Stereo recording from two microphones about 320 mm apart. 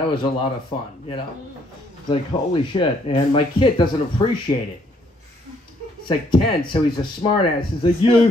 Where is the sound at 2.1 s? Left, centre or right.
Centre.